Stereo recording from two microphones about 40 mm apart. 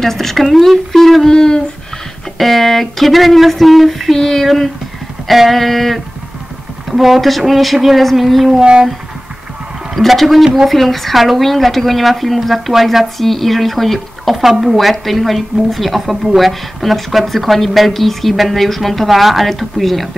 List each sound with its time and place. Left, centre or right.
0.0 s speech: centre
1.3 s a sound: centre
2.3 s speech: centre
8.5 s speech: right
9.9 s speech: centre